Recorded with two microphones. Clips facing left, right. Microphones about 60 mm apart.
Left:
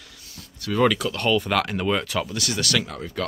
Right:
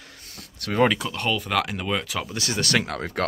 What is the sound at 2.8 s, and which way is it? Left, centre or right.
Speech, right.